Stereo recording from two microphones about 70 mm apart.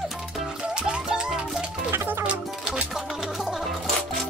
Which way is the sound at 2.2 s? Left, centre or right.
Centre.